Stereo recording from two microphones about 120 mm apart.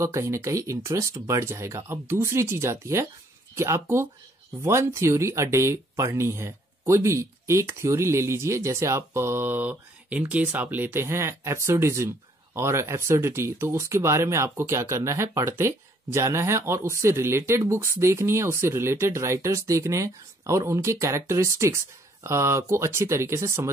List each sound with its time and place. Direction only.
0.0 s speech: 25° right (ahead or behind)